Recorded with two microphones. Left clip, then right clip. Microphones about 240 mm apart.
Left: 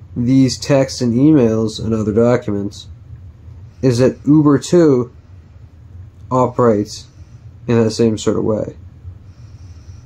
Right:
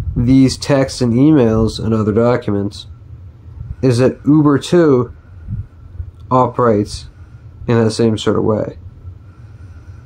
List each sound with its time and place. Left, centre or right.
0.2 s speech: centre
6.2 s speech: centre